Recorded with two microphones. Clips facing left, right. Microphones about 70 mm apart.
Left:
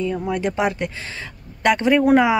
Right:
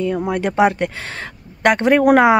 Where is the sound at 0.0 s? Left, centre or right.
Right.